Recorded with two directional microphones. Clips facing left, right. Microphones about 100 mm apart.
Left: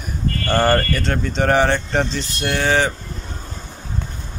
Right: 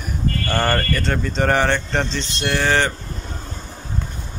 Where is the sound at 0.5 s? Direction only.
15° left (ahead or behind).